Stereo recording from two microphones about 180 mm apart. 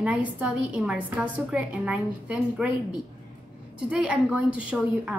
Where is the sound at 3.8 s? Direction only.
5° right (ahead or behind).